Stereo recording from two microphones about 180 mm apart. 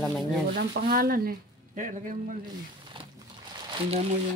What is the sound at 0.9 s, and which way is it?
Speech, 55° right (ahead or behind).